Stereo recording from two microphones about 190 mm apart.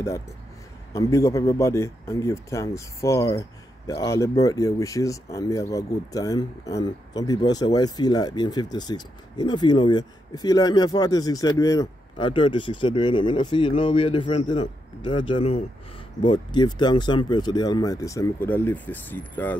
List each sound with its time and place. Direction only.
0.9 s speech: 15° left (ahead or behind)